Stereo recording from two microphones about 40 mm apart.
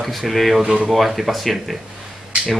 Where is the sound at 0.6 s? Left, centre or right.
Right.